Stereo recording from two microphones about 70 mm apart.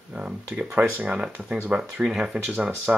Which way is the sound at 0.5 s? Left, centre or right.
Centre.